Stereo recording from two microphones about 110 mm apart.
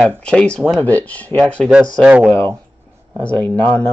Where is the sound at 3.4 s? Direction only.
15° left (ahead or behind).